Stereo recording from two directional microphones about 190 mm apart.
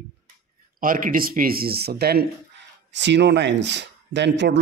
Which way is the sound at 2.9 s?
70° right (ahead or behind).